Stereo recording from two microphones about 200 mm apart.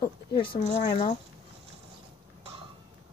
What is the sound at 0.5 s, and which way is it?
Speech, 25° left (ahead or behind).